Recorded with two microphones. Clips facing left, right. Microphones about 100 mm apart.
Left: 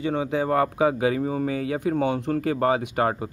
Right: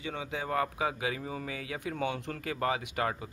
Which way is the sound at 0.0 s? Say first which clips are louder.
Left 12 dB; 45° left (ahead or behind).